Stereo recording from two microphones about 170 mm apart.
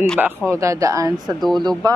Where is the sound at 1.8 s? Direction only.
25° right (ahead or behind).